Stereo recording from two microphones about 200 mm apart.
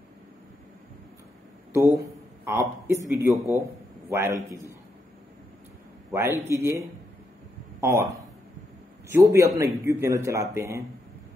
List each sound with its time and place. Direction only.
1.7 s a sound: 15° right (ahead or behind)
3.2 s a man's voice: 15° right (ahead or behind)
6.4 s a man's voice: 15° right (ahead or behind)
9.1 s a man's voice: 15° right (ahead or behind)